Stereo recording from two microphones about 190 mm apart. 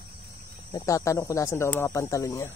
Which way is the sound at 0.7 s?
15° left (ahead or behind).